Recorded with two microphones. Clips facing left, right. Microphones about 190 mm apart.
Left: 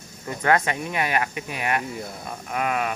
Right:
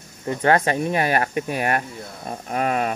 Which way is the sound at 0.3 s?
30° right (ahead or behind).